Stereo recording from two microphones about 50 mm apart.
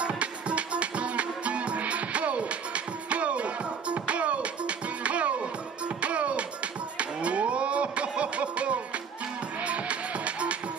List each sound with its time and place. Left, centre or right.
0.0 s music: right
7.0 s a sound: right
9.7 s music: right